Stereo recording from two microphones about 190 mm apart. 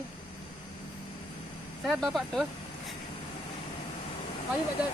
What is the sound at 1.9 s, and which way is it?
Speech, centre (ahead or behind).